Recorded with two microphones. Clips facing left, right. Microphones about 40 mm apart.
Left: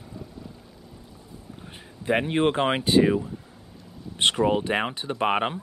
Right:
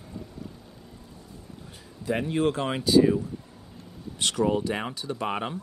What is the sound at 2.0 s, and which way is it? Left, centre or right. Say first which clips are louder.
Speech: left 3 dB; left.